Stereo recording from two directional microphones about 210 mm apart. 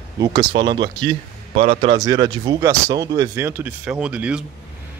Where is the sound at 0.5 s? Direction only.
20° right (ahead or behind).